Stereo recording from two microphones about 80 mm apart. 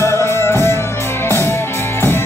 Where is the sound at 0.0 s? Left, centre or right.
Left.